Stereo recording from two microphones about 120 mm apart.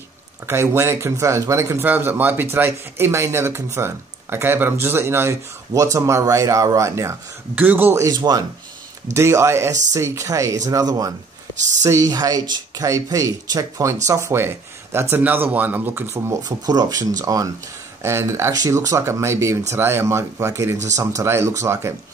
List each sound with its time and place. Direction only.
0.5 s speech: 20° right (ahead or behind)
8.1 s speech: 35° right (ahead or behind)
16.4 s speech: 35° right (ahead or behind)